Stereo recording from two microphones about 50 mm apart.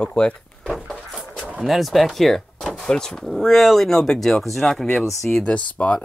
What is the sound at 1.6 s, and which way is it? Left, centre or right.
Speech, centre.